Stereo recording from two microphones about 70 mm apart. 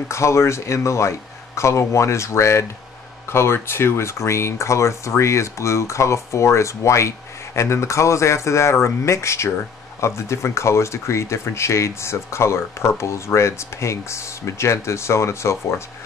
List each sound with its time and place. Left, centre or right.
0.1 s speech: left